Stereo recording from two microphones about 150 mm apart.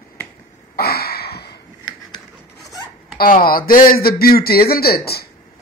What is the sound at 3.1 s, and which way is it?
Speech, 75° left (ahead or behind).